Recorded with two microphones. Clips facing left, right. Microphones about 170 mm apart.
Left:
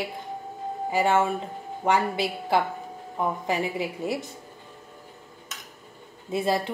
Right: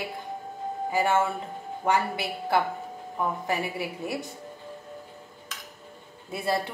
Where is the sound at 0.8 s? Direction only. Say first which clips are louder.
Left 2 dB; 20° left (ahead or behind).